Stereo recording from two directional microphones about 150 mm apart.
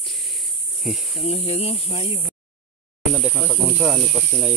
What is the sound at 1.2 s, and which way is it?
Speech, 40° left (ahead or behind).